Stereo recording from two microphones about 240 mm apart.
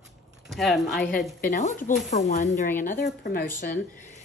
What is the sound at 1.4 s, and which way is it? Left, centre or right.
Speech, left.